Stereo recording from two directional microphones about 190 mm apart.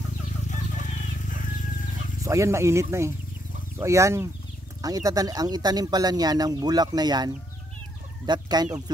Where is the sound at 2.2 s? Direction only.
15° right (ahead or behind).